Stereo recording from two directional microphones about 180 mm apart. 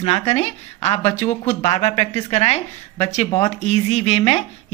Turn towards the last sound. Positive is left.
turn(degrees=35)  # may be behind; listen again after turning